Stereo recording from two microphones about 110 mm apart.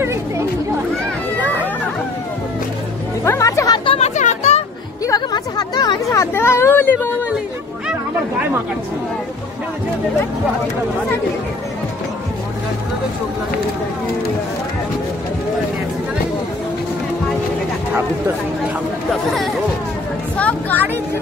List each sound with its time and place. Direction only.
0.0 s chatter: 25° right (ahead or behind)
3.3 s music: 30° left (ahead or behind)
4.0 s a sound: 90° left
5.0 s a sound: 35° left (ahead or behind)
6.3 s speech: 25° left (ahead or behind)
19.3 s speech: centre (ahead or behind)
20.3 s speech: 15° left (ahead or behind)